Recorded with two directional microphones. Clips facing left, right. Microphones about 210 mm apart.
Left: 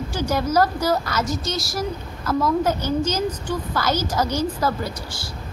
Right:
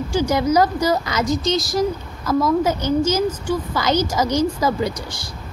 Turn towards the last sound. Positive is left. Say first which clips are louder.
# right 4 dB
turn(degrees=-15)  # may be behind; listen again after turning